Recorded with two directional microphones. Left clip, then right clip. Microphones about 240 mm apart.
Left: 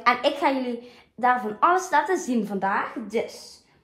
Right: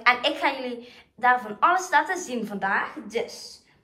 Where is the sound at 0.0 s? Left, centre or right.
Left.